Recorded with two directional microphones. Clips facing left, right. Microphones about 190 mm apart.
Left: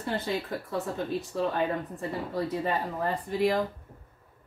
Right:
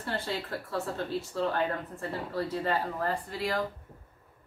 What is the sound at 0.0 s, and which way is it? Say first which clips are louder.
Speech: left 3 dB; 15° left (ahead or behind).